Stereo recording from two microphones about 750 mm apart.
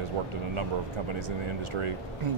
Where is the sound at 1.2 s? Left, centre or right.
Right.